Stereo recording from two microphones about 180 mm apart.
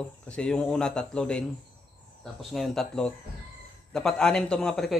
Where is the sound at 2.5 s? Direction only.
Centre (ahead or behind).